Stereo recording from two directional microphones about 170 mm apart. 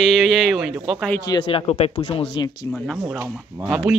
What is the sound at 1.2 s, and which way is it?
Speech, 30° left (ahead or behind).